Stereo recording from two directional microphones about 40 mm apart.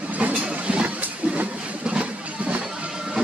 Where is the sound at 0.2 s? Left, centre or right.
Right.